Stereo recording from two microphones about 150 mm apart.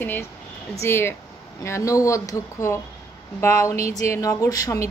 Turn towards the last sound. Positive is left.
turn(degrees=25)  # may be behind; listen again after turning